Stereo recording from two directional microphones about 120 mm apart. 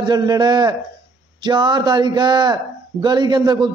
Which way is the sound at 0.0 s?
35° right (ahead or behind).